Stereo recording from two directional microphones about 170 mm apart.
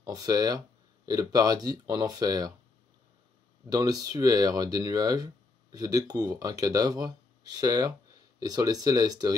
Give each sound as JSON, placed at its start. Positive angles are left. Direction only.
{"t": 0.0, "sound": "speech", "side_deg": -20}
{"t": 3.6, "sound": "speech", "side_deg": -20}